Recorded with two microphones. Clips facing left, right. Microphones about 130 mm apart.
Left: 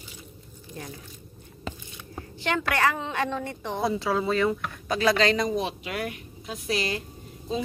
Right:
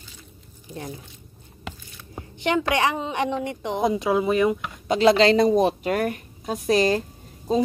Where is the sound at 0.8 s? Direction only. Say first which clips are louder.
Right 5 dB; 25° right (ahead or behind).